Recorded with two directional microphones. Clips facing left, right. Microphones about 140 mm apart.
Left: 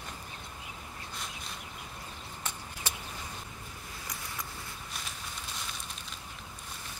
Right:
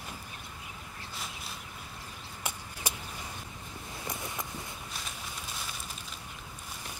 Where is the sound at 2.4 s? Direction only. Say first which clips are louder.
Right 2 dB; 10° right (ahead or behind).